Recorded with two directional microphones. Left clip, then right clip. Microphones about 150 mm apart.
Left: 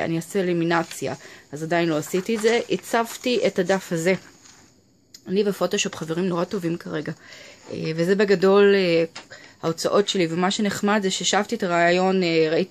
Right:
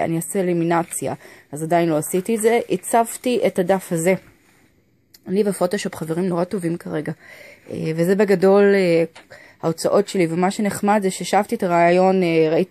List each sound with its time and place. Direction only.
0.0 s speech: 30° right (ahead or behind)
5.3 s speech: 35° right (ahead or behind)